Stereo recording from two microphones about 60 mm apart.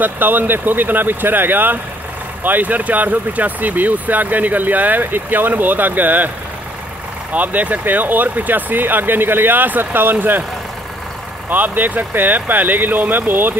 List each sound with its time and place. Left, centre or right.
0.0 s speech: right
7.3 s speech: right
11.4 s speech: right